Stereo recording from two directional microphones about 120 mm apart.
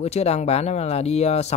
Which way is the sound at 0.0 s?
60° left (ahead or behind).